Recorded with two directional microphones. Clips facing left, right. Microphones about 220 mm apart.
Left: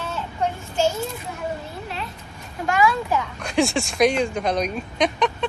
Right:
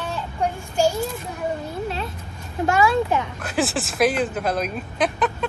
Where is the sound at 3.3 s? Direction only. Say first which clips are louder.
Left 2 dB; 5° right (ahead or behind).